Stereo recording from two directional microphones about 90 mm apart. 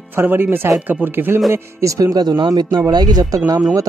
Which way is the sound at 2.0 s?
45° right (ahead or behind).